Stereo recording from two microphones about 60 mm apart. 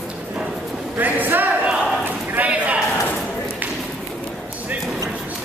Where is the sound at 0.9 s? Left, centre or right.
Right.